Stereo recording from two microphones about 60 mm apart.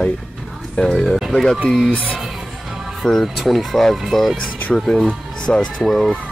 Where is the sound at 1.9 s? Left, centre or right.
Left.